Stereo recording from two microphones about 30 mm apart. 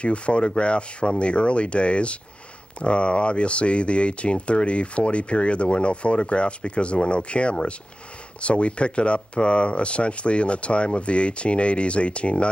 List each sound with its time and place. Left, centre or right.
0.0 s speech: left